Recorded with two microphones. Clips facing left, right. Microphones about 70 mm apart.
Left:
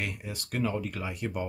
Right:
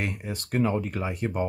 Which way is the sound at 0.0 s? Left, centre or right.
Right.